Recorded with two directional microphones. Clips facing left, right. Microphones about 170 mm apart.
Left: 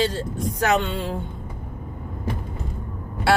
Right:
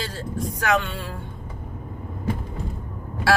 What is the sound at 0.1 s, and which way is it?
Speech, 25° left (ahead or behind).